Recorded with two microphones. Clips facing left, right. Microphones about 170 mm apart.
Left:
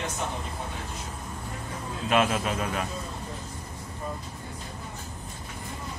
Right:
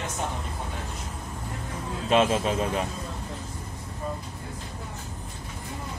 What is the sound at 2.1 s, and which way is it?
Speech, 30° right (ahead or behind).